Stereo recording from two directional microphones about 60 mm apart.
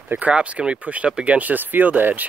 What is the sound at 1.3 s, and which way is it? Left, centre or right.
Speech, right.